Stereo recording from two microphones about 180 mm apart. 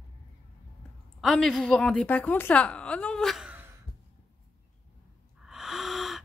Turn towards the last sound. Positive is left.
turn(degrees=0)  # may be behind; listen again after turning